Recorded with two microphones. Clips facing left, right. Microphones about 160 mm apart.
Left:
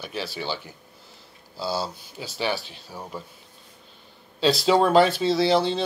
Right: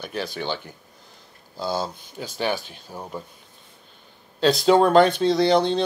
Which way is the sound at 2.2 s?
50° right (ahead or behind).